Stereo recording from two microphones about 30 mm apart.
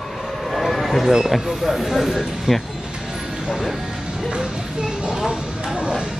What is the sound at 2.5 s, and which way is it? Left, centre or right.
Speech, right.